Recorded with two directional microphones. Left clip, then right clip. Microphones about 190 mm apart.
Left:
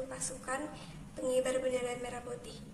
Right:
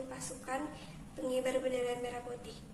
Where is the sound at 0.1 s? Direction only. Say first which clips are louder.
Left 1 dB; 5° left (ahead or behind).